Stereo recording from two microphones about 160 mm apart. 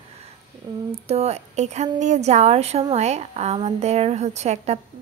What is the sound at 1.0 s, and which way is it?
A woman's voice, 40° right (ahead or behind).